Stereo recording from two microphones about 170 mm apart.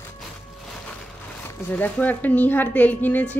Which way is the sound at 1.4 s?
15° left (ahead or behind).